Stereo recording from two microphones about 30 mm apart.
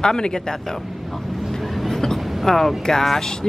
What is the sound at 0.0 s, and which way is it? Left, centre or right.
Speech, left.